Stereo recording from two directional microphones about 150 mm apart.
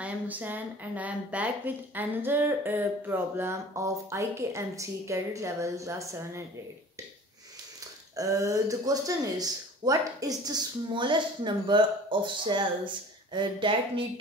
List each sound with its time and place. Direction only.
0.0 s a woman's voice: 10° right (ahead or behind)
8.2 s speech: 20° right (ahead or behind)